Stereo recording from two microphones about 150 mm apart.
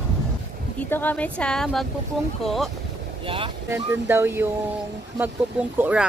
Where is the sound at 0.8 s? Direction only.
10° left (ahead or behind).